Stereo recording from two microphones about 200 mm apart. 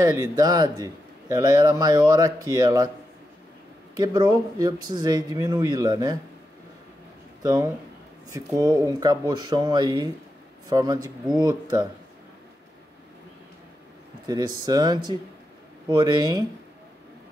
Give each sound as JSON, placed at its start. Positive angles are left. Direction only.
{"t": 0.0, "sound": "a man's voice", "side_deg": -20}
{"t": 3.9, "sound": "a man's voice", "side_deg": -20}
{"t": 7.4, "sound": "a man's voice", "side_deg": -15}
{"t": 14.2, "sound": "a man's voice", "side_deg": -20}